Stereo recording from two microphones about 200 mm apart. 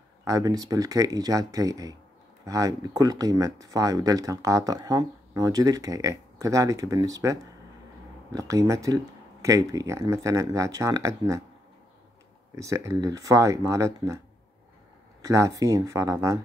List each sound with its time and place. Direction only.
0.2 s speech: 15° right (ahead or behind)
8.4 s speech: 15° right (ahead or behind)
12.5 s speech: 15° right (ahead or behind)
15.2 s speech: 15° right (ahead or behind)